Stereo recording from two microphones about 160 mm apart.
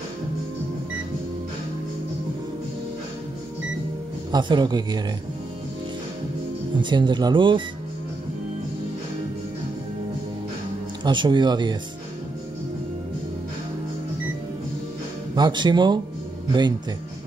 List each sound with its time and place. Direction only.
4.3 s speech: 30° right (ahead or behind)
6.8 s speech: 30° right (ahead or behind)
11.1 s speech: 30° right (ahead or behind)
15.3 s speech: 25° right (ahead or behind)